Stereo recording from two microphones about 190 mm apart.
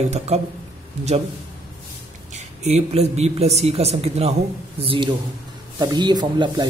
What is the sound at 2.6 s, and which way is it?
Speech, 35° right (ahead or behind).